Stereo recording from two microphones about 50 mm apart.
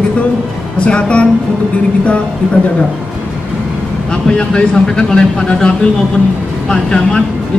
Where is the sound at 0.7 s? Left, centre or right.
Left.